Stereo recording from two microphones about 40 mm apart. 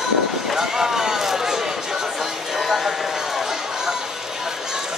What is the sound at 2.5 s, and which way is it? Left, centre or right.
Chatter, centre.